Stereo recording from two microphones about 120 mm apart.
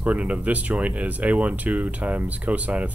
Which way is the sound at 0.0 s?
10° right (ahead or behind).